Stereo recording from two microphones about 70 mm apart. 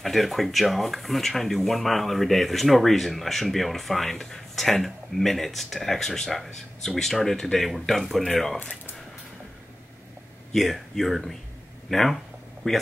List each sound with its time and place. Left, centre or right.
0.0 s speech: centre
10.5 s speech: centre